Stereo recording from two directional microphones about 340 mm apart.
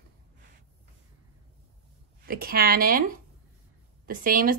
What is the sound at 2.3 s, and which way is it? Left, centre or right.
Speech, right.